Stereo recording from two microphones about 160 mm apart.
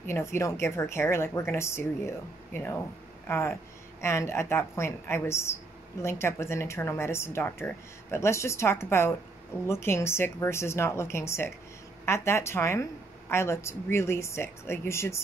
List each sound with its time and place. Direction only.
0.0 s speech: 15° left (ahead or behind)